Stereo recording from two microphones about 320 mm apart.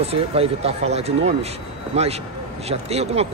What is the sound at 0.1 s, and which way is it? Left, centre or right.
Speech, centre.